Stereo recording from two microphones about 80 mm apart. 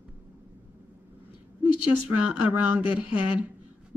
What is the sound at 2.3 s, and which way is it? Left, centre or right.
Speech, right.